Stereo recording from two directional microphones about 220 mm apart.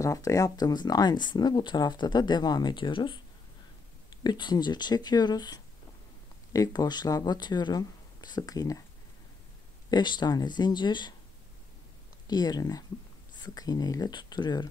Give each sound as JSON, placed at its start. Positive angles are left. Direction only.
{"t": 0.0, "sound": "speech", "side_deg": 15}
{"t": 4.2, "sound": "speech", "side_deg": 20}
{"t": 9.8, "sound": "speech", "side_deg": 20}
{"t": 12.3, "sound": "speech", "side_deg": 20}